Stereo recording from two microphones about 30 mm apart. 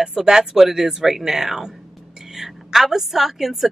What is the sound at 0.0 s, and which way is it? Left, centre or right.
A woman's voice, right.